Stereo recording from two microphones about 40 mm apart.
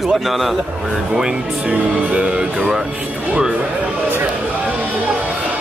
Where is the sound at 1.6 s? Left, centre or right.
Right.